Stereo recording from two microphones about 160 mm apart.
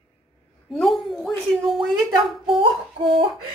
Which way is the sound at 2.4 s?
30° right (ahead or behind).